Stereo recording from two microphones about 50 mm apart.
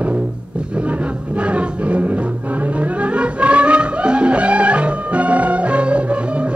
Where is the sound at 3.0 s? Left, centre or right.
Right.